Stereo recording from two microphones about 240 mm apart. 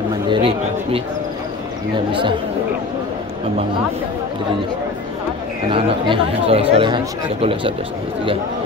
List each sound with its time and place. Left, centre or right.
0.3 s speech: right
5.7 s speech: right